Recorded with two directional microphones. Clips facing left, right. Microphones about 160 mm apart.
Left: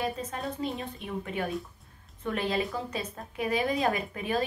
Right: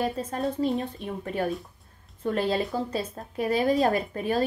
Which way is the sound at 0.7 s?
40° right (ahead or behind).